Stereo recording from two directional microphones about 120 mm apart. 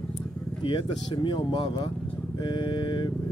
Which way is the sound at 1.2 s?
40° left (ahead or behind).